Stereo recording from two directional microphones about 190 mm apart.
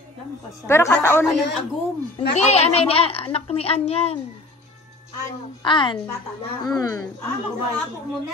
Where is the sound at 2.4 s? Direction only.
35° left (ahead or behind).